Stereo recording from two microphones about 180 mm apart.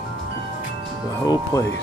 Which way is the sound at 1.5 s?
15° left (ahead or behind).